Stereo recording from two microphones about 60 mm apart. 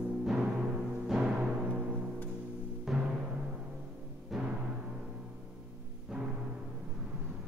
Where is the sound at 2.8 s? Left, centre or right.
Centre.